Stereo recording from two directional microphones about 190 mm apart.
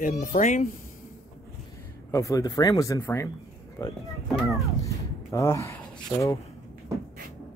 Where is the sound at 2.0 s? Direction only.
15° left (ahead or behind).